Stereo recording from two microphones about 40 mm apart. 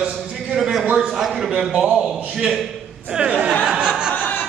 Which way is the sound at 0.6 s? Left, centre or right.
Centre.